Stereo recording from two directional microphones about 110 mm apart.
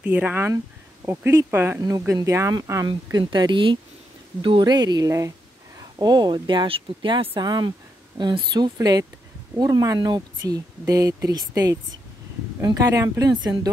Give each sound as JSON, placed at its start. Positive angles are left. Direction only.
{"t": 0.0, "sound": "speech", "side_deg": -15}
{"t": 1.0, "sound": "speech", "side_deg": -25}
{"t": 1.8, "sound": "speech", "side_deg": -30}
{"t": 2.9, "sound": "speech", "side_deg": -40}